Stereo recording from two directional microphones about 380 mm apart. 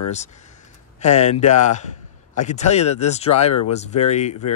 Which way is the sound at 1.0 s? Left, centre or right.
Centre.